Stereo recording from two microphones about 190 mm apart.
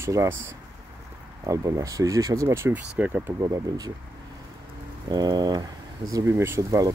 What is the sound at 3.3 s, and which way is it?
Speech, 20° right (ahead or behind).